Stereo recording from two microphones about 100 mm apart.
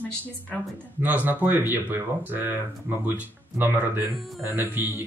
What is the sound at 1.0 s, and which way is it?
Speech, 15° right (ahead or behind).